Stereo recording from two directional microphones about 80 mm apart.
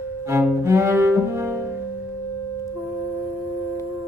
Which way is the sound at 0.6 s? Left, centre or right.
Right.